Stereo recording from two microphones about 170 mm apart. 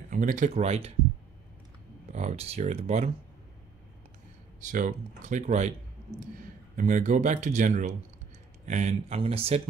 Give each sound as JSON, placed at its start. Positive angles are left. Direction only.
{"t": 0.1, "sound": "speech", "side_deg": -50}
{"t": 2.1, "sound": "speech", "side_deg": -40}
{"t": 4.6, "sound": "speech", "side_deg": -50}
{"t": 6.8, "sound": "speech", "side_deg": -45}